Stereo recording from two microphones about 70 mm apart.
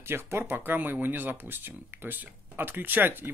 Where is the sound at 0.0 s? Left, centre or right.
Right.